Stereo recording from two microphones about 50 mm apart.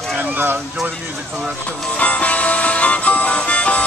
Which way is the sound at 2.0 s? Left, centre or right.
Left.